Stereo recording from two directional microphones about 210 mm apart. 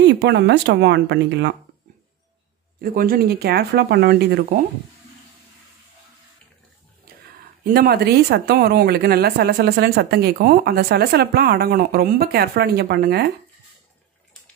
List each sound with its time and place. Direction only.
0.1 s speech: 55° right (ahead or behind)
2.8 s speech: 45° right (ahead or behind)
7.6 s speech: 45° right (ahead or behind)